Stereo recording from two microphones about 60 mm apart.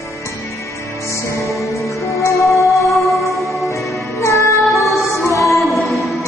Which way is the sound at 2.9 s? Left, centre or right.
Centre.